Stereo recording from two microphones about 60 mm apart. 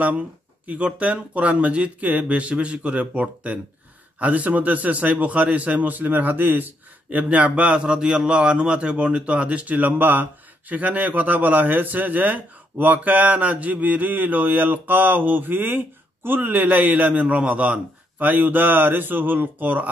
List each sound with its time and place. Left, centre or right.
0.7 s a man's voice: right